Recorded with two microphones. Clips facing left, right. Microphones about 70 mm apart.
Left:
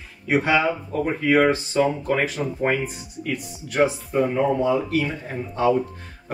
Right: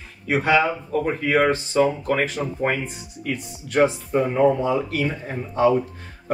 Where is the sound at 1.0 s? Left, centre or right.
Centre.